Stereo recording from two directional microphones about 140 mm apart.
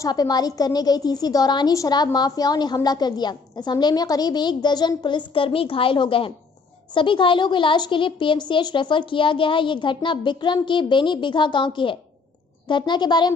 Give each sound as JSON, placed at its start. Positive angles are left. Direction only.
{"t": 0.0, "sound": "a woman's voice", "side_deg": 30}